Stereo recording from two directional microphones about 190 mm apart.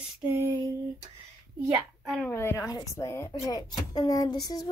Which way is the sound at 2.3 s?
15° left (ahead or behind).